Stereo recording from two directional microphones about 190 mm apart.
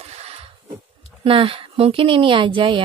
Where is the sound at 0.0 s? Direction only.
35° right (ahead or behind).